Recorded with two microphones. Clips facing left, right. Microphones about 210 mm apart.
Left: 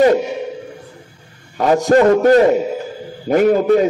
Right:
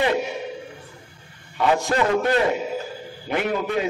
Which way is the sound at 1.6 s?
40° left (ahead or behind).